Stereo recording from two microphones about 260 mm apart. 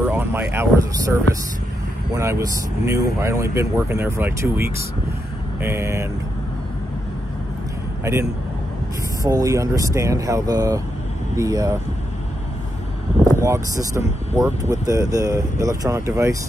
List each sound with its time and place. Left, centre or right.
0.0 s speech: centre
2.1 s speech: centre
8.0 s a man's voice: centre
13.4 s speech: centre